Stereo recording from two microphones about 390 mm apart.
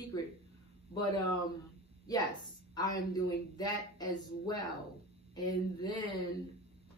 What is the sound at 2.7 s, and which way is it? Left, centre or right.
Speech, centre.